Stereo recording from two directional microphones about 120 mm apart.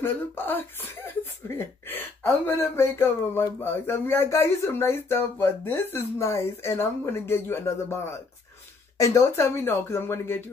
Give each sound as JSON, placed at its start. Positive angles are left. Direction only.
{"t": 0.0, "sound": "speech", "side_deg": 15}